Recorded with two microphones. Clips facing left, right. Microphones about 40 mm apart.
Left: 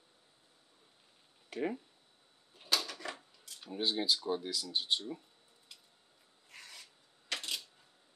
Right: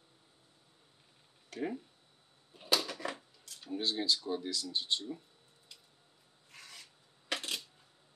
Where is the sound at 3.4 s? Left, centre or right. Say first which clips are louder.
Even; centre.